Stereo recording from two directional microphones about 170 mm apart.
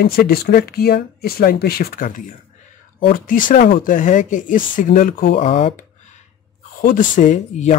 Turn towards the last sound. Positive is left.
turn(degrees=45)  # may be behind; listen again after turning